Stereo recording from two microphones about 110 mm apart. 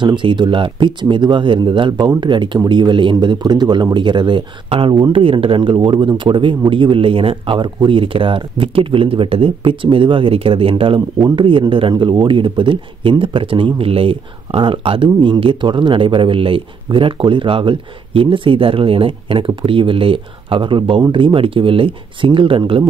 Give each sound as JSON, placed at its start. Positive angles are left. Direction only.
{"t": 0.0, "sound": "a man's voice", "side_deg": -45}